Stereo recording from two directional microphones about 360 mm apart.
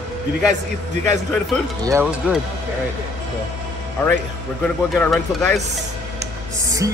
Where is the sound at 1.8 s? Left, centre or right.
Centre.